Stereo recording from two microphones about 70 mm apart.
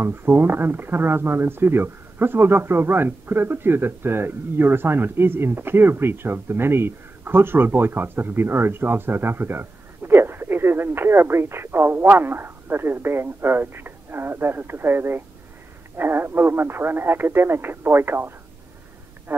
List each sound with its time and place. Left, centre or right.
0.0 s speech: right